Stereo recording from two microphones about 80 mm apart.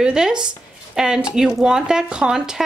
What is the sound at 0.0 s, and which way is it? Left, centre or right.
Speech, centre.